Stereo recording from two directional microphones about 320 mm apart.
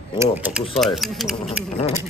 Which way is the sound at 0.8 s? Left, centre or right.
Centre.